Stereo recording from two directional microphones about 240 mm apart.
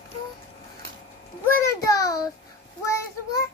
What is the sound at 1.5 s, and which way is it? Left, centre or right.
Child singing, centre.